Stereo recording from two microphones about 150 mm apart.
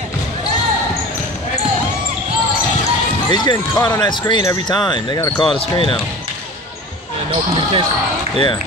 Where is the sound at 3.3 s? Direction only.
30° left (ahead or behind).